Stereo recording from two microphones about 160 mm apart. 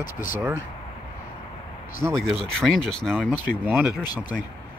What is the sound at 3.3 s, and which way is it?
Speech, 10° right (ahead or behind).